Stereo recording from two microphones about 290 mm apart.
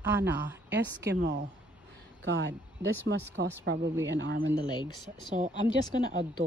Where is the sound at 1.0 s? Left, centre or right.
Right.